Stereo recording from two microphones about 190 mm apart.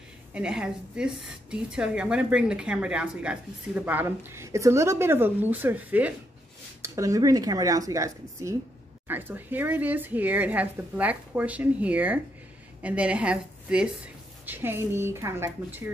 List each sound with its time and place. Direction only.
0.3 s a woman's voice: 5° right (ahead or behind)